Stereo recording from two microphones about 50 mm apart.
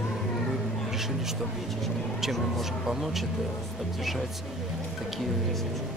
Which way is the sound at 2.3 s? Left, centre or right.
Centre.